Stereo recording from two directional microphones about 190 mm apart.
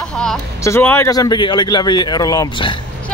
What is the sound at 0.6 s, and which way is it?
Speech, 10° left (ahead or behind).